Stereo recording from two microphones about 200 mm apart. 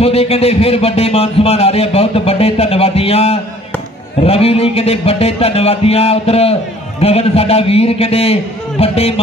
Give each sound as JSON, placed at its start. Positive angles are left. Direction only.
{"t": 0.0, "sound": "speech", "side_deg": 30}